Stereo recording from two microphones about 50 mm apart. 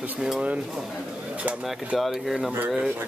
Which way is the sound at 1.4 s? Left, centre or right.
Right.